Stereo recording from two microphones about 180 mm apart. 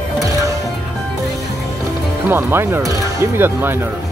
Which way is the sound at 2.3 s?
10° right (ahead or behind).